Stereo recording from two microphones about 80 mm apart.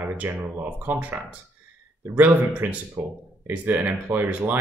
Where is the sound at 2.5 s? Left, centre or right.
Centre.